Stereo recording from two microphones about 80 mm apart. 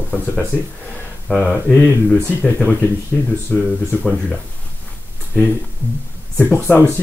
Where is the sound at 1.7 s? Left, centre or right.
Left.